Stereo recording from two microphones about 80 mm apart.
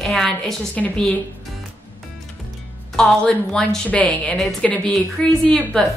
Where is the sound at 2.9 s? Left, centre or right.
Centre.